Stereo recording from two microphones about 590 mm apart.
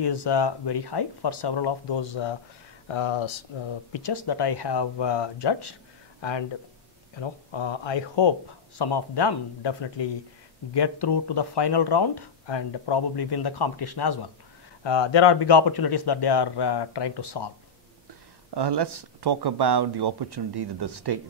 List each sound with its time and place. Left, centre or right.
0.0 s speech: left
18.5 s speech: right